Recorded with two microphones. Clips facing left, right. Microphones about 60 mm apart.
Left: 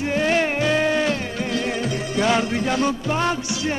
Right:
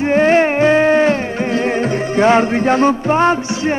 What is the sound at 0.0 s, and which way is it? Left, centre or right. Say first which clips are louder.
Music: right 8 dB; right.